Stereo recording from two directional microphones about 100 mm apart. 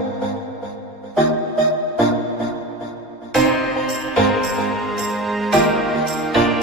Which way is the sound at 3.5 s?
Centre (ahead or behind).